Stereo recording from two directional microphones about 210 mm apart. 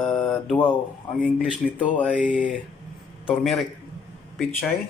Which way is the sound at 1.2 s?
5° right (ahead or behind).